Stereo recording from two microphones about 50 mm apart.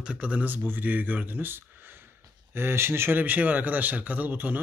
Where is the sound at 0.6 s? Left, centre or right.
Right.